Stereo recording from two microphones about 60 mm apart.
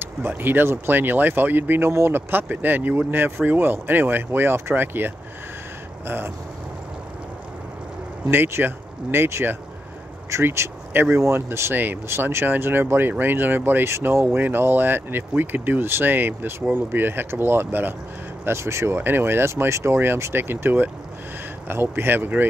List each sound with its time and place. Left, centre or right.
0.0 s speech: right
1.9 s speech: right
2.4 s speech: right
8.3 s speech: right
10.9 s speech: right
11.1 s speech: right
11.7 s speech: right
12.1 s speech: right
18.4 s speech: right
18.9 s speech: right